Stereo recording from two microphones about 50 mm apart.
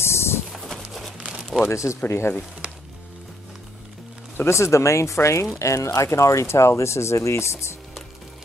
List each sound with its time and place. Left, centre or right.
0.0 s a sound: left
1.7 s speech: left
2.0 s speech: left
4.5 s speech: left
5.6 s speech: left